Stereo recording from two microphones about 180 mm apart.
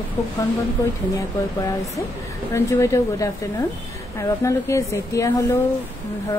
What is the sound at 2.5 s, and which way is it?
Speech, 15° left (ahead or behind).